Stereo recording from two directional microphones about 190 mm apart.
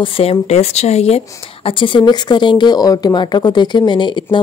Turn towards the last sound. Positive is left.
turn(degrees=25)  # may be behind; listen again after turning